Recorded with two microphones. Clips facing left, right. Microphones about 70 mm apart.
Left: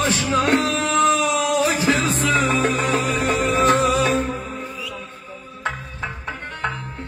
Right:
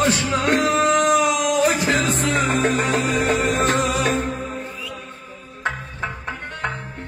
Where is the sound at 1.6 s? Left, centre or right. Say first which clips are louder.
Even; right.